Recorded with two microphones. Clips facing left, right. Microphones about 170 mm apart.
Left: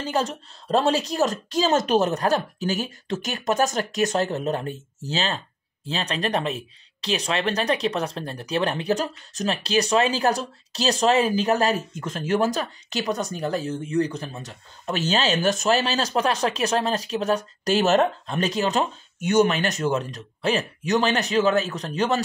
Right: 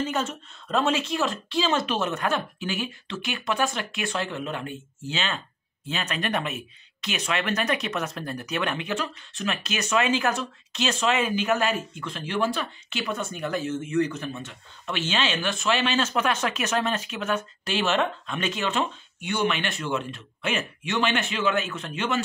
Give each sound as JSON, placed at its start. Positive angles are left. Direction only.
{"t": 0.0, "sound": "speech", "side_deg": 35}